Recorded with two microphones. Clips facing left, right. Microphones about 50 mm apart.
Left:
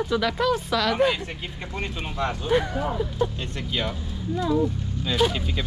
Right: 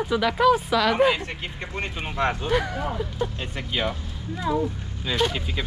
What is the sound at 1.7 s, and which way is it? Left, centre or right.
Speech, right.